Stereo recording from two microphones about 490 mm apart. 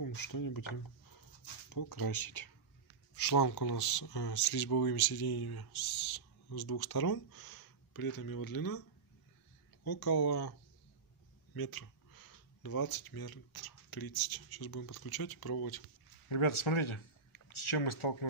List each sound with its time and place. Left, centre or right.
0.3 s speech: left
9.8 s speech: left
11.5 s speech: left
16.3 s speech: left